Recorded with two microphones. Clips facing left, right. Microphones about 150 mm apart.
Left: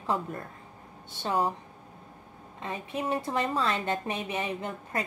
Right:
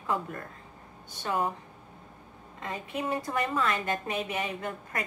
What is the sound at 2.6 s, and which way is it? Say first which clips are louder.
A woman's voice: left 1 dB; 25° left (ahead or behind).